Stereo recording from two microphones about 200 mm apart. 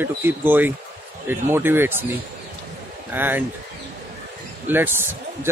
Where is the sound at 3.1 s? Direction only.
10° right (ahead or behind).